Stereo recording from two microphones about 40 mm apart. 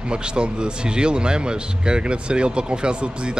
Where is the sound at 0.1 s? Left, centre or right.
Right.